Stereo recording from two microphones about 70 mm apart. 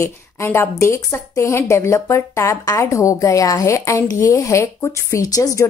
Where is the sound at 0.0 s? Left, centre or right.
Left.